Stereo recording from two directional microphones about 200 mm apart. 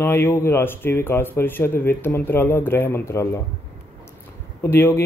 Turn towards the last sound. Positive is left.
turn(degrees=10)  # may be behind; listen again after turning